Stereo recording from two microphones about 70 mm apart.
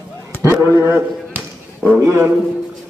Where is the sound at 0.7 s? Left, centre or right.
Right.